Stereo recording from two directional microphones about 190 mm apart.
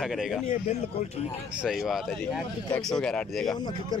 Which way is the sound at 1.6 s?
Centre (ahead or behind).